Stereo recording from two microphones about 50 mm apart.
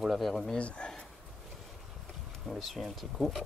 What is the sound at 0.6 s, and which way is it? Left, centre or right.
Speech, left.